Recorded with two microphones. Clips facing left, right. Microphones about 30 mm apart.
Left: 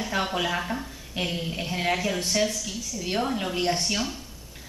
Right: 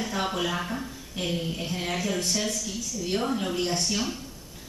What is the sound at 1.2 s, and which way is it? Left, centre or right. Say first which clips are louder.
Speech: even; centre.